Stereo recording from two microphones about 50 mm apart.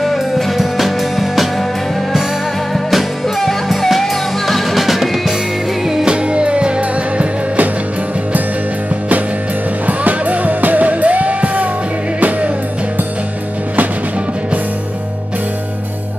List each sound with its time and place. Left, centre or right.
0.0 s music: centre
2.7 s music: centre
6.3 s music: right
9.8 s music: right